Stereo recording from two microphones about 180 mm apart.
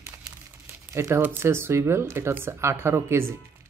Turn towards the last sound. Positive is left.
turn(degrees=-15)  # may be behind; listen again after turning